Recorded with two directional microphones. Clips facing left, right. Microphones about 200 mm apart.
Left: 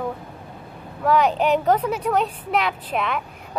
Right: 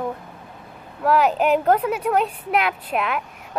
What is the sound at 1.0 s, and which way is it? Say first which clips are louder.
A woman's voice: even; 5° right (ahead or behind).